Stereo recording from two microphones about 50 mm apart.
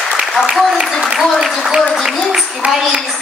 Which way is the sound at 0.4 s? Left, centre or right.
Centre.